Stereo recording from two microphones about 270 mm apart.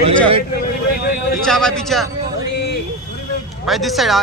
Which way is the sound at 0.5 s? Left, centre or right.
Left.